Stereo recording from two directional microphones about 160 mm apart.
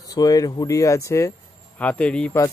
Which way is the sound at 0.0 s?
20° left (ahead or behind).